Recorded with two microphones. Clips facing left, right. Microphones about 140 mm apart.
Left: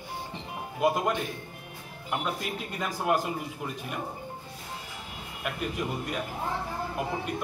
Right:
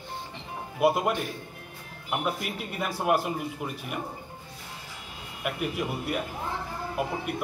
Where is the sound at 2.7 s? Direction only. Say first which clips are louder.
Right 2 dB; 10° right (ahead or behind).